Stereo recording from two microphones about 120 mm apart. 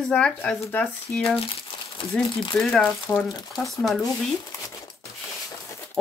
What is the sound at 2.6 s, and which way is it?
Speech, 5° left (ahead or behind).